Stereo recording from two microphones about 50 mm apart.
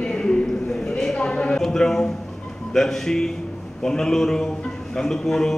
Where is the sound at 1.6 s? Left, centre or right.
Centre.